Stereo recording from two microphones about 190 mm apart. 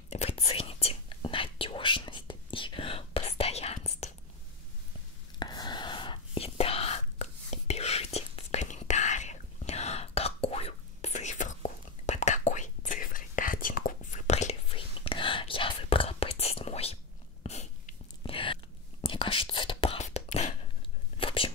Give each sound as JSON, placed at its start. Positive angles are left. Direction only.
{"t": 0.1, "sound": "whispering", "side_deg": 35}
{"t": 5.4, "sound": "whispering", "side_deg": 20}